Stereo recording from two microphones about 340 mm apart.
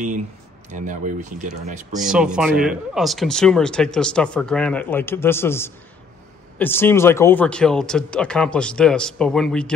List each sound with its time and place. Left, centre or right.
0.7 s speech: right
2.0 s speech: centre